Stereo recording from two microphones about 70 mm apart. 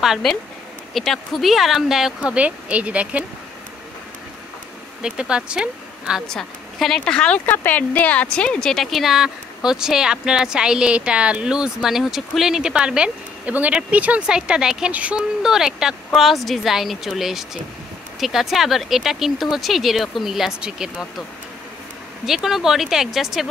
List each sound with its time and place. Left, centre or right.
0.2 s speech: centre
2.1 s speech: centre
5.0 s speech: centre
6.2 s speech: centre
7.4 s speech: left; by 8.8 s centre
8.9 s a woman's voice: centre
15.4 s a woman's voice: centre
22.2 s speech: centre